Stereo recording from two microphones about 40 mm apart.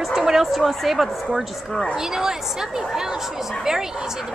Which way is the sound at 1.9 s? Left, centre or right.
Centre.